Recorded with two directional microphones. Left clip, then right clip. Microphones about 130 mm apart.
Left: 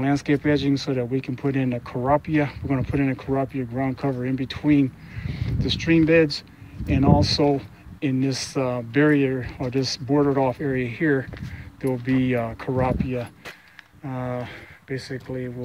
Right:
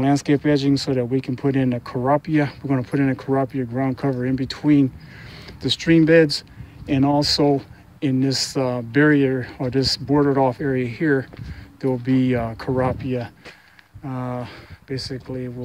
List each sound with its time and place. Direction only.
0.0 s speech: 40° right (ahead or behind)
14.0 s speech: 20° right (ahead or behind)